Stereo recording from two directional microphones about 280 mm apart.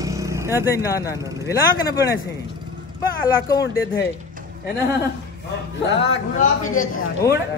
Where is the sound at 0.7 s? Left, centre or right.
Centre.